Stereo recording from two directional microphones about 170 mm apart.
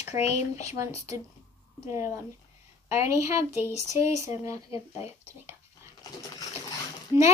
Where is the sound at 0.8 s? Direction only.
20° right (ahead or behind).